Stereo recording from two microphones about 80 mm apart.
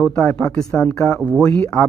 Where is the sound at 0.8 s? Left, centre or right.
Left.